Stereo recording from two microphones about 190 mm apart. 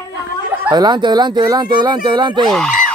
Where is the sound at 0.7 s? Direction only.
20° right (ahead or behind).